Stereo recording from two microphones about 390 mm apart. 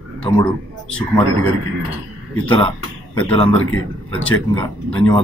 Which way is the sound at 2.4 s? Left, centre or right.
Centre.